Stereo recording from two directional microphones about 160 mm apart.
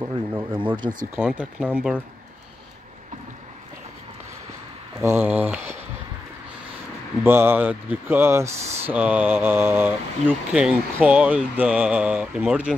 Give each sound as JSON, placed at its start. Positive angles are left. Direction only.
{"t": 0.0, "sound": "speech", "side_deg": -20}
{"t": 1.8, "sound": "speech", "side_deg": 0}
{"t": 5.0, "sound": "speech", "side_deg": -10}
{"t": 7.2, "sound": "speech", "side_deg": -15}